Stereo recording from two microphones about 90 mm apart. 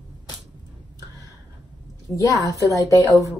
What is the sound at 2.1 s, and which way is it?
Speech, 20° left (ahead or behind).